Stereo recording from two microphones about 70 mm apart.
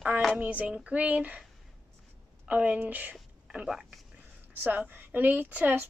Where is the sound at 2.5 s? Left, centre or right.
Right.